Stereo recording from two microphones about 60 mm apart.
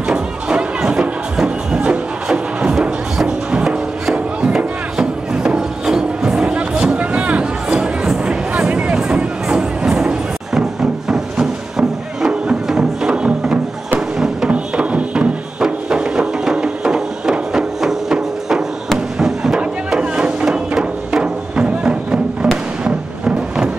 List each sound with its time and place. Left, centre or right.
0.1 s music: centre
14.5 s music: right
20.0 s music: centre
22.8 s a sound: centre